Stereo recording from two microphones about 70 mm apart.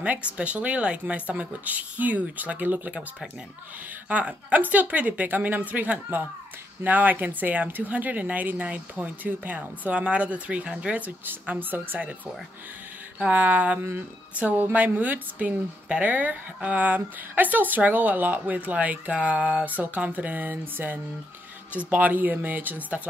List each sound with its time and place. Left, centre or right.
0.0 s a woman's voice: centre
13.2 s a woman's voice: right